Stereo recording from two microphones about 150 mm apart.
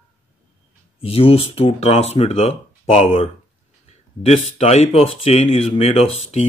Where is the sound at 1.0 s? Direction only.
40° left (ahead or behind).